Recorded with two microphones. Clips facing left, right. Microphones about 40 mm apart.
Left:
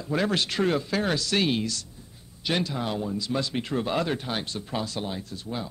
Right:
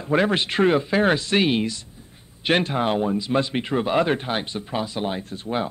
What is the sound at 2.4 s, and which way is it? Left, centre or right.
Speech, right.